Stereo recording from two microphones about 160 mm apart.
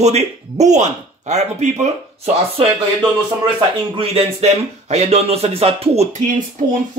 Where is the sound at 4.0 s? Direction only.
40° right (ahead or behind).